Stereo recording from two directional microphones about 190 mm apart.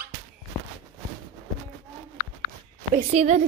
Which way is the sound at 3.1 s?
35° right (ahead or behind).